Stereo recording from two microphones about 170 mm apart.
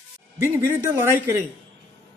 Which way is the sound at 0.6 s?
15° right (ahead or behind).